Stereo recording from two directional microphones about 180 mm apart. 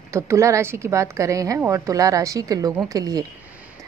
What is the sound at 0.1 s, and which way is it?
Speech, 15° right (ahead or behind).